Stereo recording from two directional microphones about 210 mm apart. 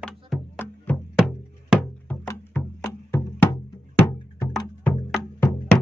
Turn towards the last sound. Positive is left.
turn(degrees=5)  # may be behind; listen again after turning